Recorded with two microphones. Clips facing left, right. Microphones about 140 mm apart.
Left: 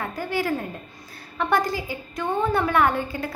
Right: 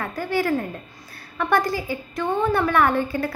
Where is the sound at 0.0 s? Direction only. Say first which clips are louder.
Right 2 dB; 15° left (ahead or behind).